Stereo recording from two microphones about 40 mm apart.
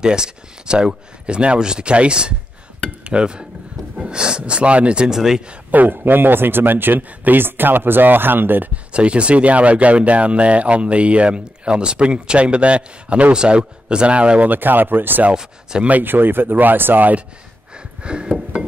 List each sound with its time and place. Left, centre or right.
0.0 s speech: centre
5.0 s speech: centre
5.7 s speech: right
8.9 s speech: right
14.5 s speech: right
18.0 s speech: right